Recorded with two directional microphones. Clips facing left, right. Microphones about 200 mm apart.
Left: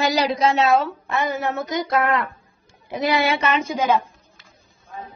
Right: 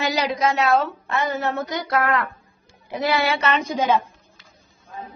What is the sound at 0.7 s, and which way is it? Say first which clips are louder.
A woman's voice: left 1 dB; 10° left (ahead or behind).